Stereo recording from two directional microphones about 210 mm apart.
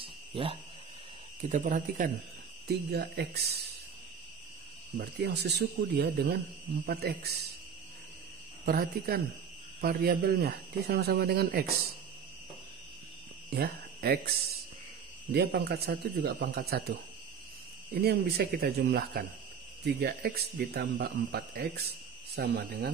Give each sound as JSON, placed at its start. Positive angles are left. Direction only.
{"t": 0.3, "sound": "speech", "side_deg": -25}
{"t": 1.4, "sound": "speech", "side_deg": -40}
{"t": 2.9, "sound": "speech", "side_deg": -50}
{"t": 4.9, "sound": "speech", "side_deg": -50}
{"t": 8.6, "sound": "speech", "side_deg": -45}
{"t": 13.5, "sound": "speech", "side_deg": -50}
{"t": 15.3, "sound": "speech", "side_deg": -50}
{"t": 17.9, "sound": "speech", "side_deg": -50}